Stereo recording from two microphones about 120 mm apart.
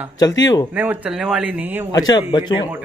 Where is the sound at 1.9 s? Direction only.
35° left (ahead or behind).